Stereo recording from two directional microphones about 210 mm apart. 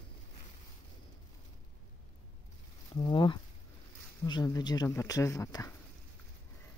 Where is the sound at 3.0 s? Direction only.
20° left (ahead or behind).